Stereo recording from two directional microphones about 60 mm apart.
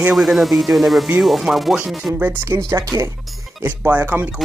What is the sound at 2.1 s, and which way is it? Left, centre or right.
Speech, right.